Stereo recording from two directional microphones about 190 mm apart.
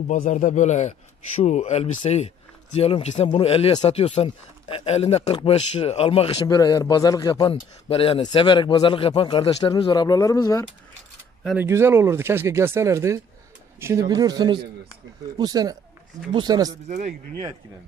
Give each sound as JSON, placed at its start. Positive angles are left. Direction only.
{"t": 0.1, "sound": "speech", "side_deg": 40}
{"t": 6.4, "sound": "a man's voice", "side_deg": 20}
{"t": 11.5, "sound": "a man's voice", "side_deg": -15}